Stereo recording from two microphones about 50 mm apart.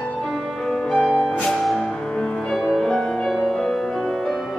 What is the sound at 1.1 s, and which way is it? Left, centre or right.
Music, left.